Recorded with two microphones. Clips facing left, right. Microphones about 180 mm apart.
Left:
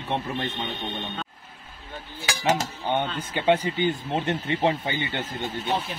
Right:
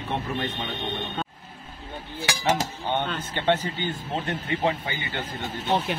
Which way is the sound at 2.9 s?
10° left (ahead or behind).